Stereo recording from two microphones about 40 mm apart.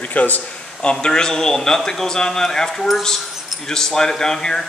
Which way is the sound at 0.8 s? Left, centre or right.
Left.